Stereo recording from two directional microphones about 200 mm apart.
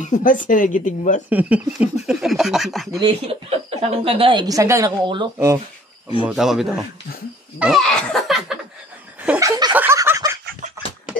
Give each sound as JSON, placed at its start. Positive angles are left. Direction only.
{"t": 0.0, "sound": "speech", "side_deg": 40}
{"t": 1.3, "sound": "speech", "side_deg": -5}
{"t": 3.0, "sound": "a woman's voice", "side_deg": -30}
{"t": 6.2, "sound": "speech", "side_deg": 0}
{"t": 7.5, "sound": "laughter", "side_deg": -5}
{"t": 9.2, "sound": "a sound", "side_deg": -5}